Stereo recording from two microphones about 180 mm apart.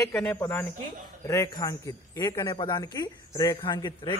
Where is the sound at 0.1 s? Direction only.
5° left (ahead or behind).